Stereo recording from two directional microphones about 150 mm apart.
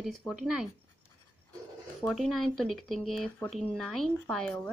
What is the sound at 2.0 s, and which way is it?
Speech, 5° left (ahead or behind).